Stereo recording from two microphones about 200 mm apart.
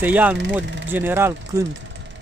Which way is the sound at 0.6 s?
65° right (ahead or behind).